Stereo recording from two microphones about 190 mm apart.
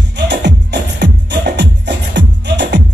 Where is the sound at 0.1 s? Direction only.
65° right (ahead or behind).